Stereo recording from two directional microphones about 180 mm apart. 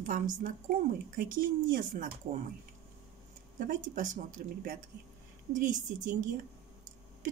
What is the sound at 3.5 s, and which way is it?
Speech, 50° right (ahead or behind).